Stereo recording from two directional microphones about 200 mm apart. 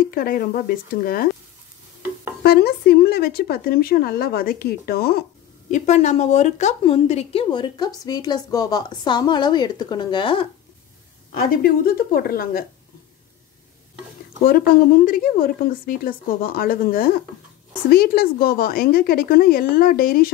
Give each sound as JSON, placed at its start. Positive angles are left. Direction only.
{"t": 0.0, "sound": "a woman's voice", "side_deg": 45}
{"t": 2.4, "sound": "a woman's voice", "side_deg": 50}
{"t": 5.7, "sound": "a woman's voice", "side_deg": 35}
{"t": 11.3, "sound": "a woman's voice", "side_deg": 45}
{"t": 14.4, "sound": "a woman's voice", "side_deg": 45}